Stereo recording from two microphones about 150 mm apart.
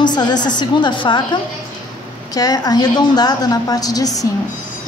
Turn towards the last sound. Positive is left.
turn(degrees=25)  # may be behind; listen again after turning